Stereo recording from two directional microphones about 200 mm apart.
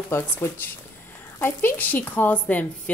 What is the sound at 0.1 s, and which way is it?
A woman's voice, 10° left (ahead or behind).